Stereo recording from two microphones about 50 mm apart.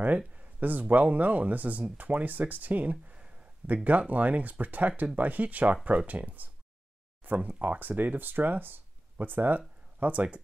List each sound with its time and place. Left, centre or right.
0.4 s speech: right